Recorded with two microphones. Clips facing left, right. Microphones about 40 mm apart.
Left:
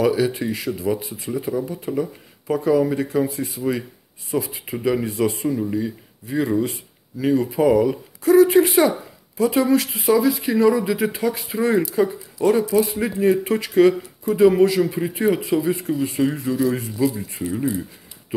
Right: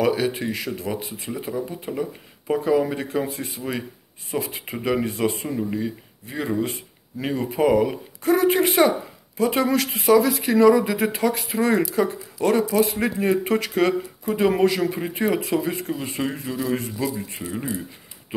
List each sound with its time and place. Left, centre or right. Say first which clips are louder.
0.0 s speech: left 2 dB; right
2.0 s speech: left 3 dB; right
10.7 s speech: right 1 dB; right
17.0 s speech: left 9 dB; right
17.5 s speech: left 6 dB; right